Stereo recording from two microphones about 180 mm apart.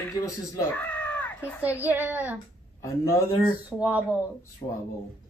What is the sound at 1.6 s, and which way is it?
Speech, 10° right (ahead or behind).